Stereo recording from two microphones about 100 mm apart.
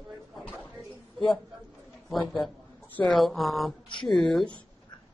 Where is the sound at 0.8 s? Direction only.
Centre (ahead or behind).